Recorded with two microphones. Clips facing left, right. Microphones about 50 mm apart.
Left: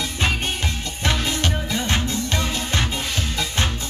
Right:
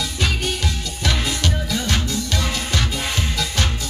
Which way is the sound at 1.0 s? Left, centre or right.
Left.